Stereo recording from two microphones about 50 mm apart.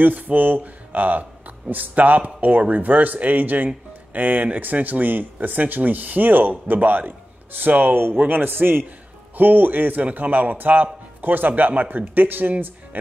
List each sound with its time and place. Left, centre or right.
0.0 s a man's voice: right